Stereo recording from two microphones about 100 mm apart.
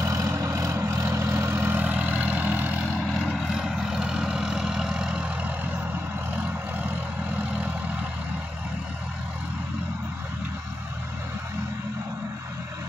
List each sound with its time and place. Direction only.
0.0 s vehicle: 30° right (ahead or behind); by 2.8 s 15° right (ahead or behind)
2.9 s vehicle: 5° left (ahead or behind); by 7.7 s 15° right (ahead or behind)